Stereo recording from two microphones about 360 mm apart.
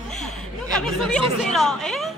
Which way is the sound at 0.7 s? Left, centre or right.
Centre.